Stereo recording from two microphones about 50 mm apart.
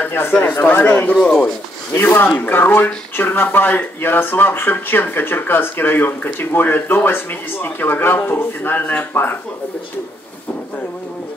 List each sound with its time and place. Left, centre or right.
0.0 s speech: left
0.4 s speech: left
1.2 s speech: left
1.9 s speech: left